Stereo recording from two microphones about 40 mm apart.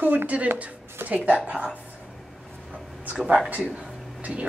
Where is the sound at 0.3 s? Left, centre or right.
Right.